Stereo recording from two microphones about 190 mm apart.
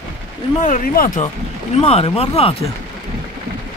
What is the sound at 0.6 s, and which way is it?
Speech, 45° left (ahead or behind).